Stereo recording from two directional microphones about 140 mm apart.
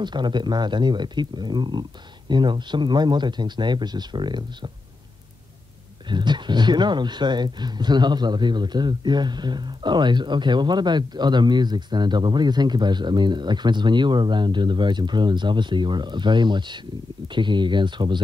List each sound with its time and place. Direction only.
0.0 s speech: 35° right (ahead or behind)
6.0 s speech: 35° right (ahead or behind)